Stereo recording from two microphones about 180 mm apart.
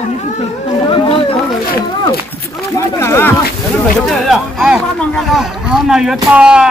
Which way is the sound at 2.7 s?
15° left (ahead or behind).